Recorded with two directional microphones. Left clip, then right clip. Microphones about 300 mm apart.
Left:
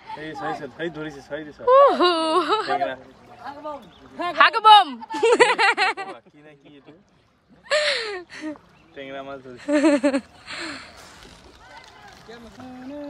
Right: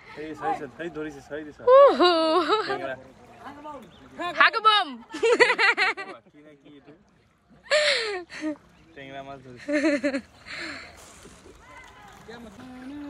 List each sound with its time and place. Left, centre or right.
0.2 s a man's voice: left
1.7 s speech: centre
4.3 s speech: centre
7.6 s a sound: centre
8.9 s a man's voice: left
9.6 s speech: centre